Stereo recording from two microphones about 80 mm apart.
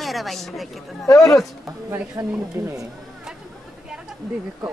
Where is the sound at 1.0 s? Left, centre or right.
Left.